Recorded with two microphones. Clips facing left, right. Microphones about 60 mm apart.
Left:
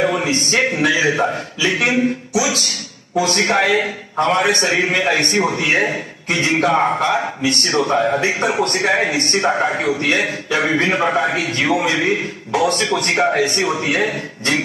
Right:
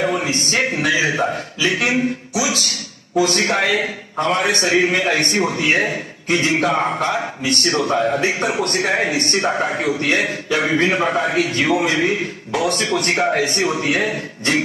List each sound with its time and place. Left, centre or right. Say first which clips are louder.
0.0 s a sound: left 2 dB; left
0.8 s a man's voice: left 2 dB; left
6.7 s a man's voice: left 3 dB; left
9.4 s a man's voice: left 4 dB; centre
10.0 s a man's voice: left 1 dB; left
13.2 s a man's voice: left 2 dB; left